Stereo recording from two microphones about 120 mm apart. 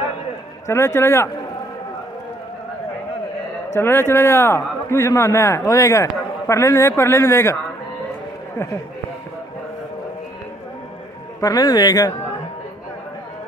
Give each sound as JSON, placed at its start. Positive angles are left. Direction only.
{"t": 0.7, "sound": "a man's voice", "side_deg": 25}
{"t": 3.7, "sound": "a man's voice", "side_deg": 20}
{"t": 11.4, "sound": "speech", "side_deg": 35}